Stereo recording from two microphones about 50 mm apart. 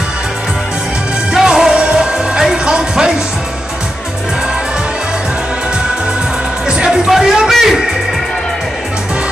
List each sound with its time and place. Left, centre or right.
1.3 s music: centre
6.7 s music: centre